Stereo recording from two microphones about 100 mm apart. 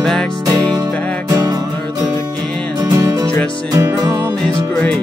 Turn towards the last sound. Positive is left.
turn(degrees=-35)  # may be behind; listen again after turning